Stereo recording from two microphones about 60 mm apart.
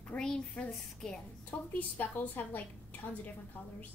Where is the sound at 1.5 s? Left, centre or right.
Left.